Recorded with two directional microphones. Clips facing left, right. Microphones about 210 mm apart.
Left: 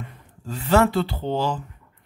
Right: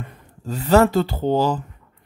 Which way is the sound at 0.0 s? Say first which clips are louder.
Right 3 dB; 40° right (ahead or behind).